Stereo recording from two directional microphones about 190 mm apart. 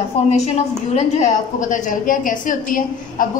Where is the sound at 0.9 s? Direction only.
40° left (ahead or behind).